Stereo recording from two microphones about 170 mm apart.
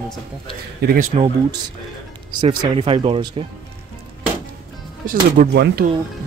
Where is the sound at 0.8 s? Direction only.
75° right (ahead or behind).